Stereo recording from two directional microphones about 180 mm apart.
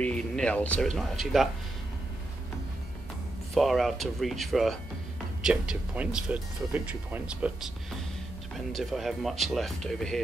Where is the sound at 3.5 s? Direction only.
Centre (ahead or behind).